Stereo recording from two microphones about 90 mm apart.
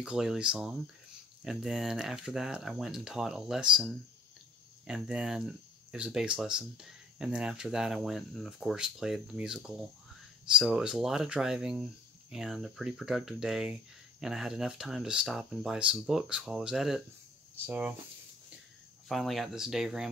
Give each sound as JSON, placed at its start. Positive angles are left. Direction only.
{"t": 0.0, "sound": "speech", "side_deg": -5}
{"t": 17.6, "sound": "speech", "side_deg": -15}
{"t": 19.0, "sound": "speech", "side_deg": 0}